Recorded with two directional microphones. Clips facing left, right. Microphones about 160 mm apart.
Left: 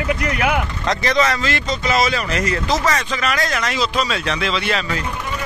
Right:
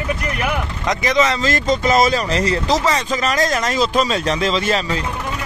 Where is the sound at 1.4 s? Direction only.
45° right (ahead or behind).